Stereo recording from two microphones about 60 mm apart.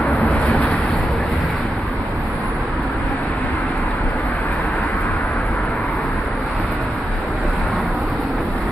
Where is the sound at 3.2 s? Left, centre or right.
Left.